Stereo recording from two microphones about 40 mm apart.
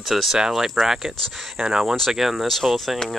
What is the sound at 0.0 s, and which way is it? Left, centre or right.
Speech, centre.